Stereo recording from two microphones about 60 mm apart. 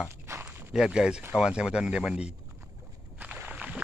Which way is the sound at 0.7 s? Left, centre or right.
Centre.